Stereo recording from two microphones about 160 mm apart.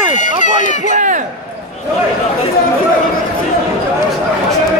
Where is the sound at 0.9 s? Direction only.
50° right (ahead or behind).